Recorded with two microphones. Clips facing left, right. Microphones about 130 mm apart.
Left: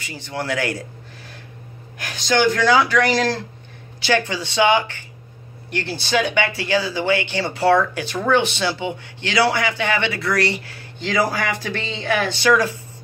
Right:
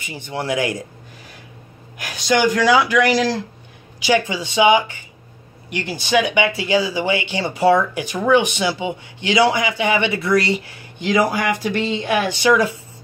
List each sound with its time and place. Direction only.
0.0 s a man's voice: 20° right (ahead or behind)
2.0 s speech: 10° right (ahead or behind)